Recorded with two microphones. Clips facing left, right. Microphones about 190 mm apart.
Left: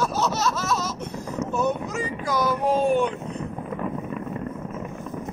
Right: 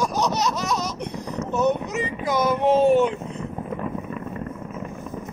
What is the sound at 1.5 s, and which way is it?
Boat, 20° right (ahead or behind).